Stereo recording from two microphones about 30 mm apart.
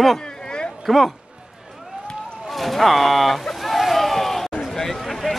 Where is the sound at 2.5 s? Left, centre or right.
Centre.